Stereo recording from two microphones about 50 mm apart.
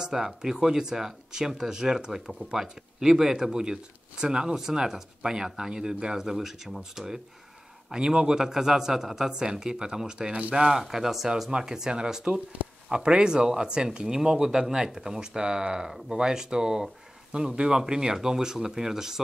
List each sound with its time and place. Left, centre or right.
0.0 s speech: centre
12.6 s a sound: right
12.9 s speech: centre